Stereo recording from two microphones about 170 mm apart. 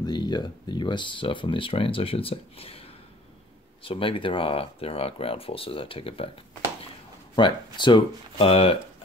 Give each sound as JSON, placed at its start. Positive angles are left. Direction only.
{"t": 0.0, "sound": "speech", "side_deg": 25}
{"t": 7.3, "sound": "speech", "side_deg": 25}